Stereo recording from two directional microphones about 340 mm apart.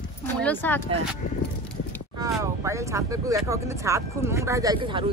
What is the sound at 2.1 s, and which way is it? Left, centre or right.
Speech, centre.